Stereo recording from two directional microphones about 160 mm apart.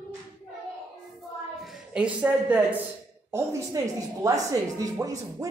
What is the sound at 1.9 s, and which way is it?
Speech, 5° right (ahead or behind).